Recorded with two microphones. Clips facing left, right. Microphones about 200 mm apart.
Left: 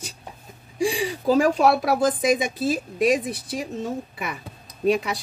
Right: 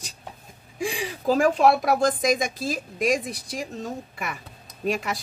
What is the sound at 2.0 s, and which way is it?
A woman's voice, 5° left (ahead or behind).